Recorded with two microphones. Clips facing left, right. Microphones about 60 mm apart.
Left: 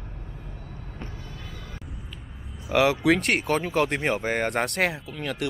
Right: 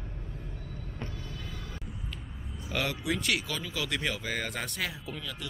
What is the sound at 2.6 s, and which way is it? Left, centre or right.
Speech, left.